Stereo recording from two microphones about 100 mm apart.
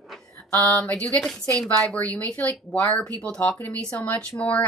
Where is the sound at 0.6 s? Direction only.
15° left (ahead or behind).